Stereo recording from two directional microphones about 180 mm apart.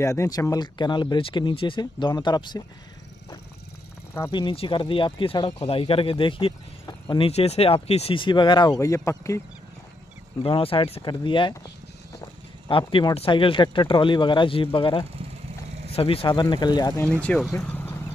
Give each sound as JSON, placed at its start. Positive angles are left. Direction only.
{"t": 0.0, "sound": "speech", "side_deg": 15}
{"t": 4.3, "sound": "speech", "side_deg": 25}
{"t": 10.4, "sound": "speech", "side_deg": 30}
{"t": 17.2, "sound": "speech", "side_deg": 5}